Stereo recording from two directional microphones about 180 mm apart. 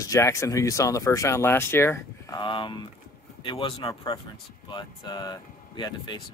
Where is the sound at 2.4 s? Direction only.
25° left (ahead or behind).